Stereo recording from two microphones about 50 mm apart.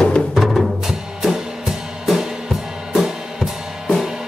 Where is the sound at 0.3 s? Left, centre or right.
Centre.